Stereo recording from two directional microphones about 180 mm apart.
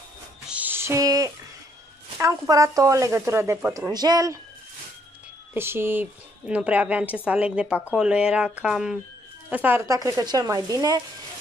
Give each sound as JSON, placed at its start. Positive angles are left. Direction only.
{"t": 0.5, "sound": "music", "side_deg": -10}
{"t": 2.1, "sound": "speech", "side_deg": -20}
{"t": 5.5, "sound": "a woman's voice", "side_deg": -15}